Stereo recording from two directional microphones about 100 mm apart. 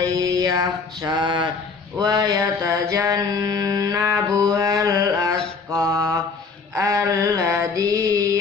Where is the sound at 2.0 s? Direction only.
40° right (ahead or behind).